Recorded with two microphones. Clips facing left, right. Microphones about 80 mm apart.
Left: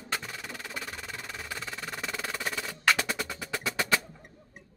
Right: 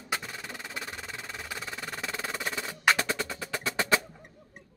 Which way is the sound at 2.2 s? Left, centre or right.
Centre.